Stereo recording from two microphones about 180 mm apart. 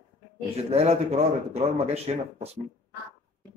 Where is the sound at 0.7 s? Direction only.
35° right (ahead or behind).